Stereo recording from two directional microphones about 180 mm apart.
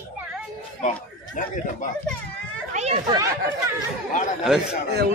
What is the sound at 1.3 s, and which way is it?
Speech, 45° left (ahead or behind).